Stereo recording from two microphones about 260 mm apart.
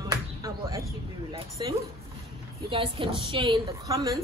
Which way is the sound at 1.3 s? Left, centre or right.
Centre.